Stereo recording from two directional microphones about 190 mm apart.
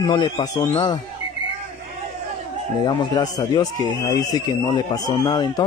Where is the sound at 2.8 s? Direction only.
20° left (ahead or behind).